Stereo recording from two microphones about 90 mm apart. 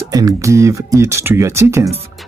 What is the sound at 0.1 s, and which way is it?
Speech, 40° right (ahead or behind).